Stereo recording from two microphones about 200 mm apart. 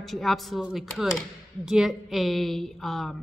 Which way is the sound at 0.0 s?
Centre (ahead or behind).